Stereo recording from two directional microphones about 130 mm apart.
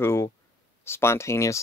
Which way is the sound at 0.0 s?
20° left (ahead or behind).